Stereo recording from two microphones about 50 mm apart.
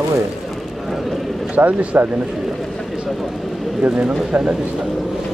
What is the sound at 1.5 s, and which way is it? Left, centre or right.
Speech, right.